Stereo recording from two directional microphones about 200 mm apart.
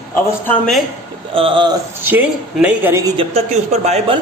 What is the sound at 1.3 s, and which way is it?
Speech, 25° right (ahead or behind).